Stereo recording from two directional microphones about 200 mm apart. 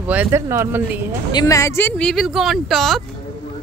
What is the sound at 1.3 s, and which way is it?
Speech, 20° left (ahead or behind).